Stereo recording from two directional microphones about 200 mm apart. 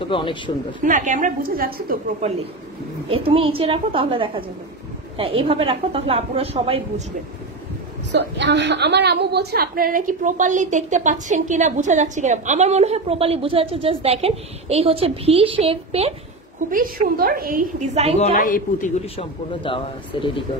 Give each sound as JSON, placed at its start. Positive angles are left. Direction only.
{"t": 0.0, "sound": "speech", "side_deg": 25}
{"t": 0.8, "sound": "a woman's voice", "side_deg": -40}
{"t": 3.1, "sound": "a woman's voice", "side_deg": -30}
{"t": 8.1, "sound": "a woman's voice", "side_deg": -60}
{"t": 16.7, "sound": "a woman's voice", "side_deg": -45}
{"t": 18.2, "sound": "a man's voice", "side_deg": 40}
{"t": 19.1, "sound": "a man's voice", "side_deg": 25}